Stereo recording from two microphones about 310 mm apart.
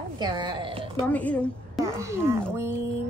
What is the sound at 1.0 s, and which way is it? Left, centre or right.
Speech, centre.